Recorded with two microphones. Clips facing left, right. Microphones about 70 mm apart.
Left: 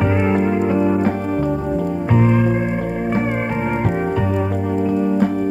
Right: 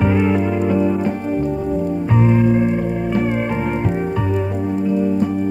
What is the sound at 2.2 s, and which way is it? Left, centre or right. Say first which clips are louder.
Music: right 3 dB; left.